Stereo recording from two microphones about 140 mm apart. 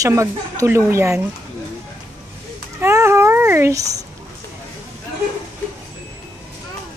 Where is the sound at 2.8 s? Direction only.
20° right (ahead or behind).